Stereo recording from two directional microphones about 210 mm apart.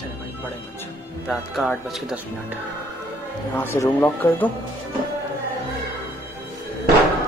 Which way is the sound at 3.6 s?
10° left (ahead or behind).